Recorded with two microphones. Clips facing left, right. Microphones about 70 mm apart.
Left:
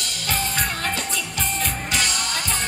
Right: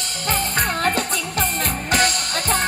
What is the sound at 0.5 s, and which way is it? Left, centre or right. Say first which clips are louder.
Music: right 5 dB; right.